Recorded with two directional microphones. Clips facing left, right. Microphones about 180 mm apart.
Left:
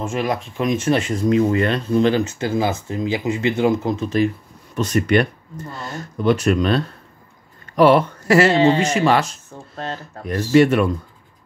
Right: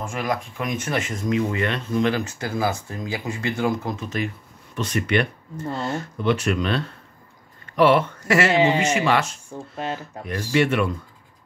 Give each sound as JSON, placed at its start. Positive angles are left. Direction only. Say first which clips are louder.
{"t": 0.0, "sound": "speech", "louder": "left 4 dB", "side_deg": 25}
{"t": 4.7, "sound": "speech", "louder": "left 5 dB", "side_deg": 40}
{"t": 5.7, "sound": "speech", "louder": "right 7 dB", "side_deg": -30}
{"t": 5.9, "sound": "speech", "louder": "left 7 dB", "side_deg": 40}
{"t": 8.5, "sound": "speech", "louder": "left 4 dB", "side_deg": -15}
{"t": 8.8, "sound": "speech", "louder": "left 3 dB", "side_deg": 35}
{"t": 9.5, "sound": "speech", "louder": "right 1 dB", "side_deg": -15}
{"t": 10.5, "sound": "speech", "louder": "left 7 dB", "side_deg": 40}